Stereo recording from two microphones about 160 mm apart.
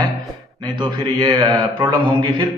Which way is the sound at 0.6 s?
25° right (ahead or behind).